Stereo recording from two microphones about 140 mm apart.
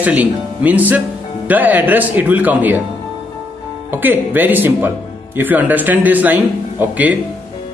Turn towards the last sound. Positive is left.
turn(degrees=-10)  # may be behind; listen again after turning